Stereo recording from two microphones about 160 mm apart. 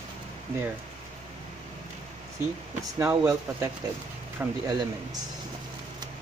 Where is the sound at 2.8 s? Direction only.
15° right (ahead or behind).